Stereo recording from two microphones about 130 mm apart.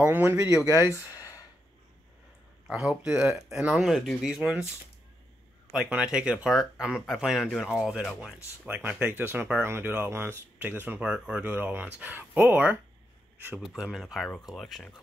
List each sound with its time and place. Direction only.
0.0 s speech: 15° right (ahead or behind)
0.7 s speech: 25° left (ahead or behind)
2.7 s speech: 5° right (ahead or behind)
5.7 s speech: 5° right (ahead or behind)
8.6 s speech: 10° right (ahead or behind)